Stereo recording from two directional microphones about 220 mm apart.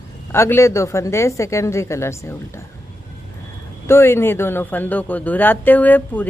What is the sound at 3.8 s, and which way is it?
A man's voice, 10° left (ahead or behind).